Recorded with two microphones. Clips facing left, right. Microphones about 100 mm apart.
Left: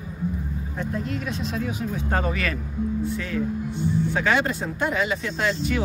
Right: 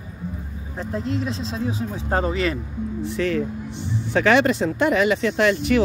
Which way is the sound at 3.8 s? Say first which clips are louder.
Right 3 dB; 80° right.